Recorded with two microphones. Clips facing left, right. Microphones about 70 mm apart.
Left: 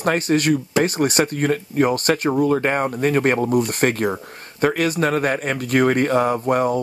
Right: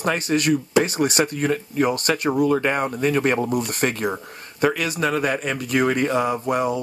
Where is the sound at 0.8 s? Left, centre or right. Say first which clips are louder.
Left 2 dB; left.